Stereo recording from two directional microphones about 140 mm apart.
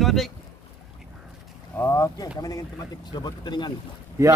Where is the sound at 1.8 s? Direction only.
25° left (ahead or behind).